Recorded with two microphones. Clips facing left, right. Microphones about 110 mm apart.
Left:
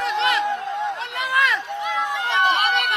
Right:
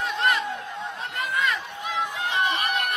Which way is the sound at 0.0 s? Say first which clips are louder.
Left 4 dB; 85° left.